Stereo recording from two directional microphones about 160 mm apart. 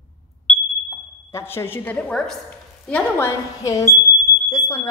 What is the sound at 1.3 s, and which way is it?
A woman's voice, 15° left (ahead or behind).